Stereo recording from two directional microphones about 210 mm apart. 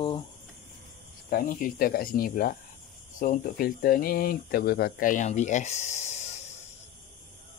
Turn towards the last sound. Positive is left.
turn(degrees=35)  # may be behind; listen again after turning